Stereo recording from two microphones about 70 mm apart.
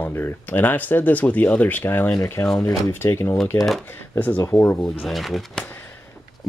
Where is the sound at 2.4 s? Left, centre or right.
Left.